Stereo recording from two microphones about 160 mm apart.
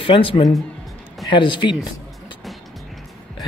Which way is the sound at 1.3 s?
30° left (ahead or behind).